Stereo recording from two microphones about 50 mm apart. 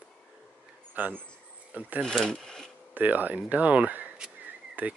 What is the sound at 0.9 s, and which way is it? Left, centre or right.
Speech, right.